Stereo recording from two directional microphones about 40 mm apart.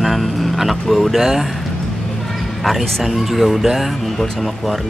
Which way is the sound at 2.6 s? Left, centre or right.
Centre.